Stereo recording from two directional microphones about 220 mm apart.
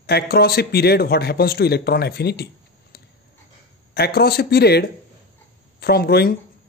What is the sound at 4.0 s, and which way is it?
A man's voice, 45° left (ahead or behind).